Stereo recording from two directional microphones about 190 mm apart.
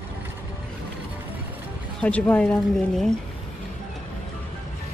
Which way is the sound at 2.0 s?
5° left (ahead or behind).